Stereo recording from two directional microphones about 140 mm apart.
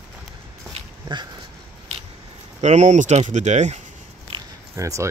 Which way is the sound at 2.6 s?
55° right (ahead or behind).